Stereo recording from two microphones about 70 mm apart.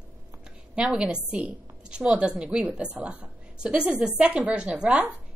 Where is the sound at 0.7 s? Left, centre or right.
Centre.